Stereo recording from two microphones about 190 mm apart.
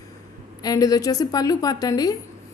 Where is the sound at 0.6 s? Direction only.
20° left (ahead or behind).